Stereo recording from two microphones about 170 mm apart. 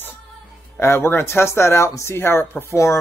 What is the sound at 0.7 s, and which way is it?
Speech, 15° left (ahead or behind).